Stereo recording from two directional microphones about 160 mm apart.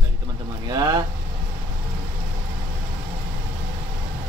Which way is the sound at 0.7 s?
25° right (ahead or behind).